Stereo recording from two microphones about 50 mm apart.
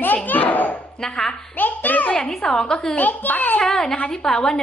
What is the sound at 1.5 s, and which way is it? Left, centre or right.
Speech, left.